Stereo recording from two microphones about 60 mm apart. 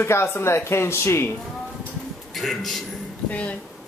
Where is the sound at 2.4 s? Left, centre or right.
Centre.